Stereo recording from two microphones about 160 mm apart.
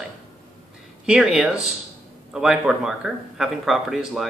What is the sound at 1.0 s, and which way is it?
Speech, 5° right (ahead or behind).